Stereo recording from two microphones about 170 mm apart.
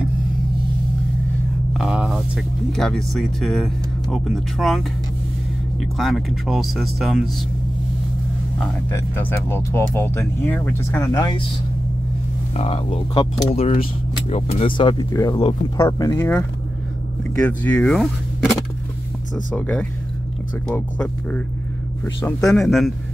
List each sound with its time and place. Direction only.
1.7 s speech: 5° right (ahead or behind)
8.9 s speech: 15° left (ahead or behind)
12.5 s speech: 35° left (ahead or behind)
17.4 s speech: 10° left (ahead or behind)
22.4 s speech: centre (ahead or behind)